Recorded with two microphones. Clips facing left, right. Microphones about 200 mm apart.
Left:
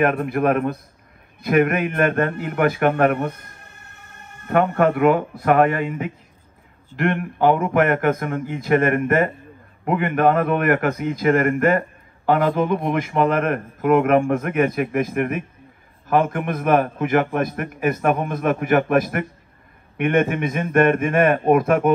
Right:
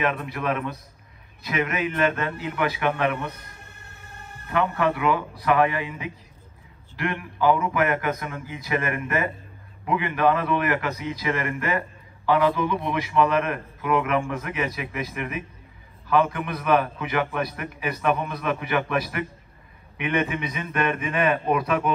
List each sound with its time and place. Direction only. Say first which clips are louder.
0.0 s a man's voice: left 8 dB; 50° left (ahead or behind)
4.5 s a man's voice: left 6 dB; 50° left (ahead or behind)